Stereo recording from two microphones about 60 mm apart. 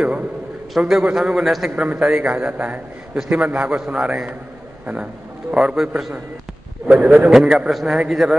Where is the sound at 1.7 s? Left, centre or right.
Right.